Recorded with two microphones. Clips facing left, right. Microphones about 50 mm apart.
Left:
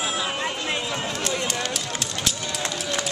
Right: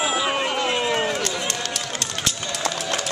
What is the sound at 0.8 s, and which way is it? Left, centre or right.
Run, right.